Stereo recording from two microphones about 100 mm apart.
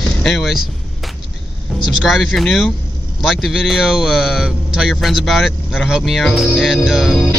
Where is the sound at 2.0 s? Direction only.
Centre (ahead or behind).